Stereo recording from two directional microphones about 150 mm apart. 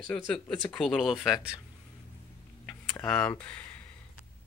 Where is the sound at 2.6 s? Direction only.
10° left (ahead or behind).